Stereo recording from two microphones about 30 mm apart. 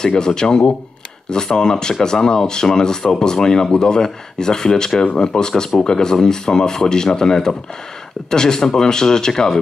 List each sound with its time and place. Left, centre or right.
0.0 s speech: left